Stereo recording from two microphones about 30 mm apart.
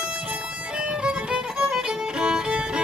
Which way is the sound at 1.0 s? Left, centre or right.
Right.